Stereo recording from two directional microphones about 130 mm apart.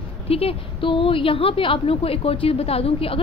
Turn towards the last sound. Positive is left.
turn(degrees=45)  # may be behind; listen again after turning